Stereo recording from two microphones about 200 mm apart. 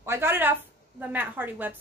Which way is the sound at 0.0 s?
10° right (ahead or behind).